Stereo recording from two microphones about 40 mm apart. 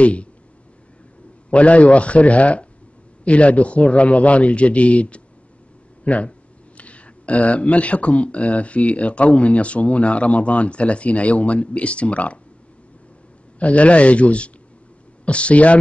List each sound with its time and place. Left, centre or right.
0.0 s speech: left
1.5 s speech: left
13.6 s speech: left